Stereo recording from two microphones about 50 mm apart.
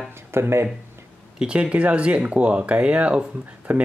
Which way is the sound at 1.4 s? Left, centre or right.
Right.